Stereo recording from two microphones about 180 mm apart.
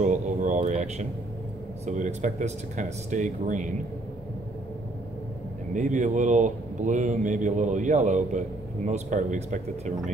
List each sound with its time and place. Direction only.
0.0 s a sound: 40° right (ahead or behind)
1.9 s speech: 45° right (ahead or behind)
5.7 s speech: 45° right (ahead or behind)